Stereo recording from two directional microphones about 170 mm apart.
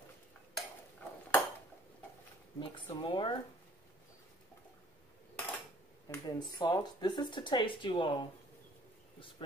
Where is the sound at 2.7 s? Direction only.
30° left (ahead or behind).